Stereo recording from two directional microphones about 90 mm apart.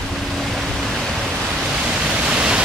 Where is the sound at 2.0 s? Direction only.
10° right (ahead or behind).